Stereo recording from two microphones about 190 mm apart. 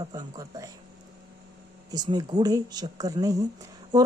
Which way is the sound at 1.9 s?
20° right (ahead or behind).